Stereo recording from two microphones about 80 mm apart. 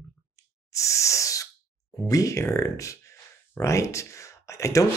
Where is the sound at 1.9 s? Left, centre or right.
Left.